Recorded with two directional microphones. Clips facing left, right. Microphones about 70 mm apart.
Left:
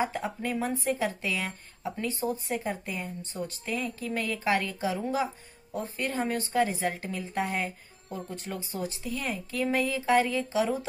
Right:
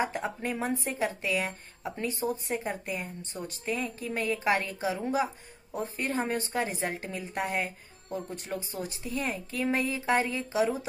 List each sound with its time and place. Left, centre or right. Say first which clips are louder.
0.0 s a woman's voice: left 1 dB; right